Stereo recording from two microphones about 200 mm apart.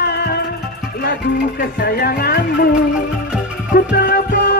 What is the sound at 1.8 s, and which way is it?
Music, 50° left (ahead or behind).